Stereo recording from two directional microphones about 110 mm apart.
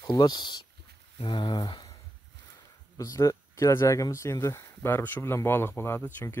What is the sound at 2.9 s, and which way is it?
Speech, 30° left (ahead or behind).